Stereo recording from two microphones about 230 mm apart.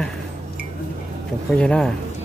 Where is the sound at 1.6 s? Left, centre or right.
Centre.